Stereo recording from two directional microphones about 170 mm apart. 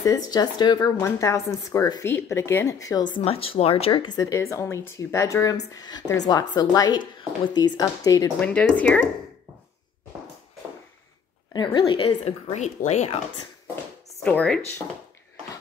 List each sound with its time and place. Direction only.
0.0 s speech: 20° left (ahead or behind)
3.2 s speech: 35° left (ahead or behind); by 8.5 s 20° left (ahead or behind)
8.5 s speech: 10° left (ahead or behind)
11.5 s speech: 25° left (ahead or behind)
12.5 s speech: 40° left (ahead or behind)
14.2 s speech: 5° left (ahead or behind)